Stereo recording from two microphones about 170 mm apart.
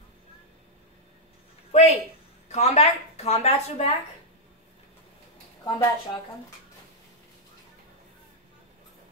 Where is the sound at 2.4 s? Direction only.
40° left (ahead or behind).